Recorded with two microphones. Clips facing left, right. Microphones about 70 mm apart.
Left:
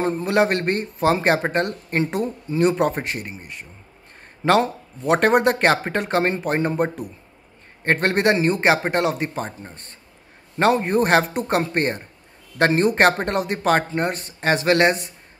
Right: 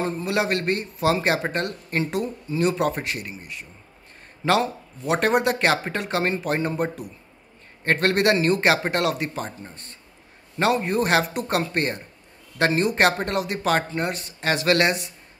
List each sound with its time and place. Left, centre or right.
0.0 s speech: left